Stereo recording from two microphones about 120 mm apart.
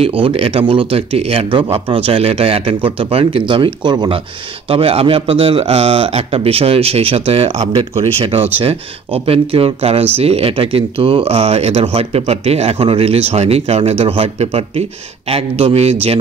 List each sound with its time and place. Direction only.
0.0 s speech: 50° right (ahead or behind)
4.6 s speech: 55° right (ahead or behind)